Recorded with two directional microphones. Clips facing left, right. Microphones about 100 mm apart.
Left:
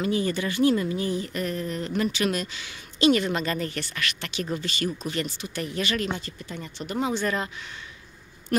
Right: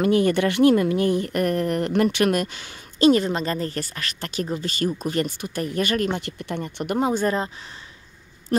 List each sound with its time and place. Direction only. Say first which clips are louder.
0.0 s a woman's voice: right 7 dB; 60° right (ahead or behind)
6.2 s speech: right 7 dB; 65° right (ahead or behind); by 7.5 s 35° right (ahead or behind)